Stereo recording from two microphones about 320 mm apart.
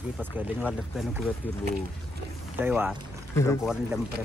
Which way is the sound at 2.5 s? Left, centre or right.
Centre.